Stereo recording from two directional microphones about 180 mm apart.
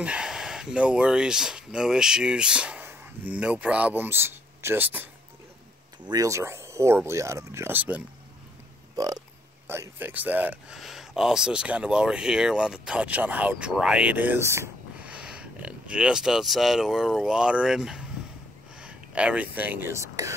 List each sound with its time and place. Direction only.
0.0 s speech: 5° right (ahead or behind)
8.9 s speech: 20° right (ahead or behind)